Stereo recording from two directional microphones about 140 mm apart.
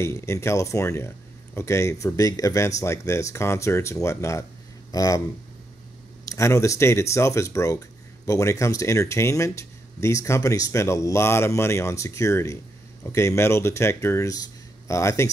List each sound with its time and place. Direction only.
0.0 s speech: 20° left (ahead or behind)
6.2 s speech: 20° left (ahead or behind)